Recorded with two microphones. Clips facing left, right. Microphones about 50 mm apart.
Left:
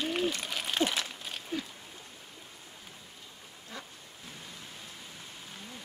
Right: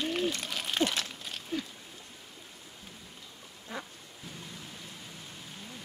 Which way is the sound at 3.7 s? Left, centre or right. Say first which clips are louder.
Right 5 dB; centre.